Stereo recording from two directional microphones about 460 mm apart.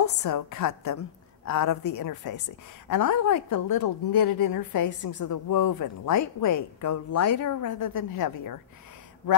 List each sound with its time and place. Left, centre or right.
0.0 s a woman's voice: left
3.6 s a woman's voice: left
4.4 s a woman's voice: left